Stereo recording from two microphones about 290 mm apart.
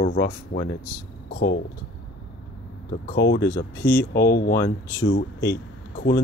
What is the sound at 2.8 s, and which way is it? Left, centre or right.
Speech, left.